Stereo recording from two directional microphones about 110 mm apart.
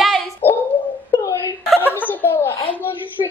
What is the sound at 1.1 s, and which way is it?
Wail, 30° left (ahead or behind).